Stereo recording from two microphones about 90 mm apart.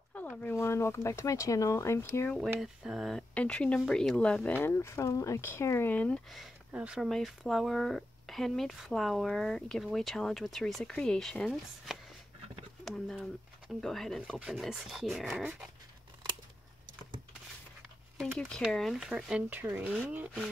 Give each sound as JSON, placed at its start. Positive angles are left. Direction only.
{"t": 0.1, "sound": "a sound", "side_deg": 15}
{"t": 0.6, "sound": "speech", "side_deg": 30}
{"t": 2.6, "sound": "speech", "side_deg": -5}
{"t": 3.3, "sound": "speech", "side_deg": 10}
{"t": 4.6, "sound": "speech", "side_deg": 25}
{"t": 6.3, "sound": "speech", "side_deg": -10}
{"t": 7.0, "sound": "speech", "side_deg": 0}
{"t": 18.2, "sound": "speech", "side_deg": 0}
{"t": 19.5, "sound": "speech", "side_deg": -20}